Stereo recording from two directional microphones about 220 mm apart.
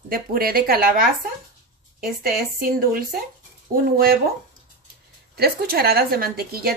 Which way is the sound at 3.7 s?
45° right (ahead or behind).